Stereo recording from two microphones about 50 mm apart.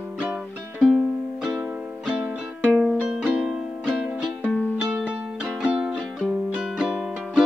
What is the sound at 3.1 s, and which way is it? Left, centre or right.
Music, centre.